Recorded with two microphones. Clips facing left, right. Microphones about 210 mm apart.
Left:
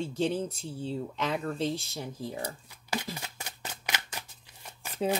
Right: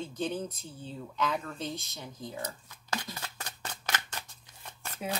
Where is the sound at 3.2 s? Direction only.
10° left (ahead or behind).